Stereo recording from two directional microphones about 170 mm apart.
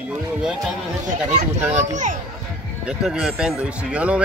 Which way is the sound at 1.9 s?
45° right (ahead or behind).